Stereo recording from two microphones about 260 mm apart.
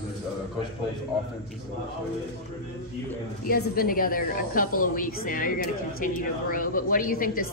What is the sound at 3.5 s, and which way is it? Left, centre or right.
A woman's voice, left.